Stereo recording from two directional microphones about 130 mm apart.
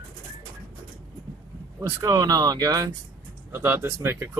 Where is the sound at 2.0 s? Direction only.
30° right (ahead or behind).